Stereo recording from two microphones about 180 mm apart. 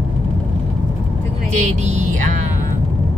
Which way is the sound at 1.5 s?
40° right (ahead or behind).